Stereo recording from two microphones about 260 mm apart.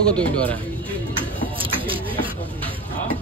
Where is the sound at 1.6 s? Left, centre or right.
Centre.